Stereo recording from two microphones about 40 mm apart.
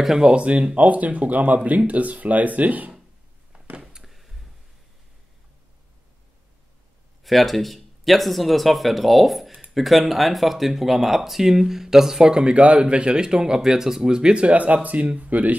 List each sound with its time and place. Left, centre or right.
0.2 s speech: right
3.8 s a sound: centre
7.2 s speech: centre
12.2 s speech: right